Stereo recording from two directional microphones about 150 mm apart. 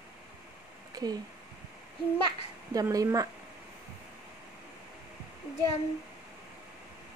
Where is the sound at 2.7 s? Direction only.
25° right (ahead or behind).